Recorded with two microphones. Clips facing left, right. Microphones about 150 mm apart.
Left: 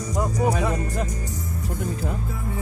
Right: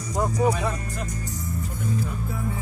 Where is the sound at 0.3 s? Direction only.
45° left (ahead or behind).